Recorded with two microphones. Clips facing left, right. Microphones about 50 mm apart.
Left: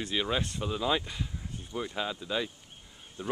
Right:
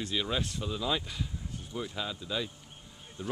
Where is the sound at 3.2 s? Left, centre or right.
Left.